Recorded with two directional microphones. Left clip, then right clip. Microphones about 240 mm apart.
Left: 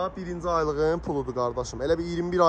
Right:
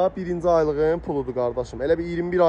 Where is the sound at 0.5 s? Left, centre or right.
Centre.